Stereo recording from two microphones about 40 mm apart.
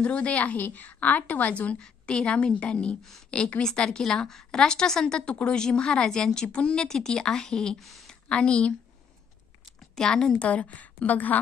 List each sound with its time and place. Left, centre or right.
0.0 s a woman's voice: left
1.8 s a woman's voice: left
2.3 s a woman's voice: left; by 7.7 s centre
7.8 s speech: centre
8.1 s a woman's voice: left
9.9 s a woman's voice: left